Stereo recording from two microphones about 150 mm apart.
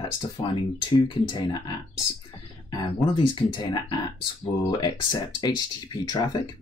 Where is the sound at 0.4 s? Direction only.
30° left (ahead or behind).